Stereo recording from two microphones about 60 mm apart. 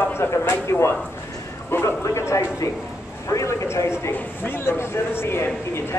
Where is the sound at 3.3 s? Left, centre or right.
Left.